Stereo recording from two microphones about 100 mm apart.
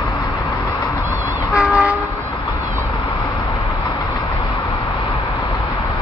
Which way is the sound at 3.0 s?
45° left (ahead or behind).